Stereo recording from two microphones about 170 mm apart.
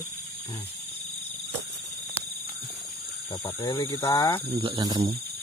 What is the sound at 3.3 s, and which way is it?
Speech, 25° left (ahead or behind).